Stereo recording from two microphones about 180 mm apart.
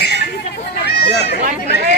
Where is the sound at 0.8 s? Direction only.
65° left (ahead or behind).